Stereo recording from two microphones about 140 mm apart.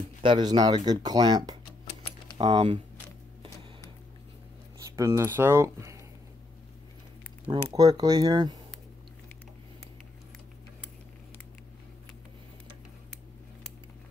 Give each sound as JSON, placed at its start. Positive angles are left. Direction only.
{"t": 0.2, "sound": "speech", "side_deg": -35}
{"t": 4.7, "sound": "speech", "side_deg": -20}
{"t": 7.7, "sound": "speech", "side_deg": -25}